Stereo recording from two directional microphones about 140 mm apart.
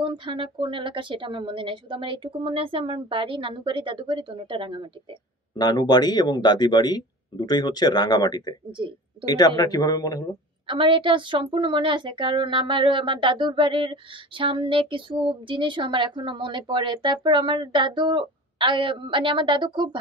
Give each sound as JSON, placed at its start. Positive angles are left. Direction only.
{"t": 0.0, "sound": "a woman's voice", "side_deg": -35}
{"t": 5.6, "sound": "a man's voice", "side_deg": 30}
{"t": 10.7, "sound": "a woman's voice", "side_deg": -40}